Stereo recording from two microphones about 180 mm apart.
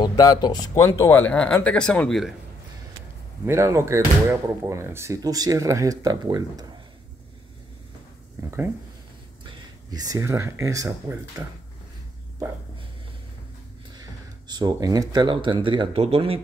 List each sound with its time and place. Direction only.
0.0 s speech: 20° left (ahead or behind); by 2.3 s centre (ahead or behind)
3.4 s speech: 15° right (ahead or behind)
9.4 s speech: 25° right (ahead or behind)
14.5 s speech: 25° right (ahead or behind)